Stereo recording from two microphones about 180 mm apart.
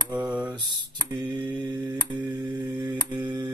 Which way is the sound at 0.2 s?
5° right (ahead or behind).